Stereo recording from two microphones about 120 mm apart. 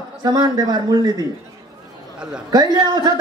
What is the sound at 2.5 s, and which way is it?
Speech, 35° right (ahead or behind).